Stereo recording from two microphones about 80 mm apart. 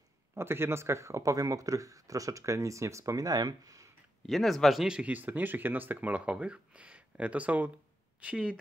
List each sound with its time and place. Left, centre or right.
0.3 s speech: right
4.3 s speech: centre
4.8 s speech: centre
5.1 s speech: right